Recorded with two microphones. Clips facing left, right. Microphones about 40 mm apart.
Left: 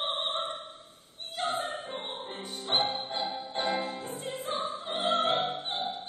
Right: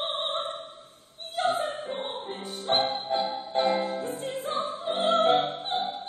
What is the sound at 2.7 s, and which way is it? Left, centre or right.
Music, centre.